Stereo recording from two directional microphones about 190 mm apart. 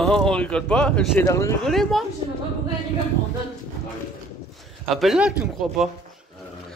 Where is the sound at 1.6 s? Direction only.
Centre (ahead or behind).